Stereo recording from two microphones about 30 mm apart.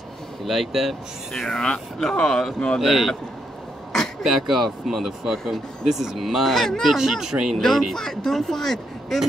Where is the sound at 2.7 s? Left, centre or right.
Centre.